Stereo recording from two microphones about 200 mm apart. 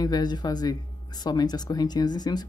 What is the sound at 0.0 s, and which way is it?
Speech, 20° left (ahead or behind).